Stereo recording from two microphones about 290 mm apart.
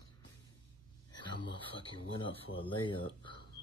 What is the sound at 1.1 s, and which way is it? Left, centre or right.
Speech, centre.